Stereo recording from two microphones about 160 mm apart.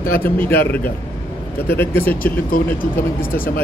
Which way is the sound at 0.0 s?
65° left (ahead or behind).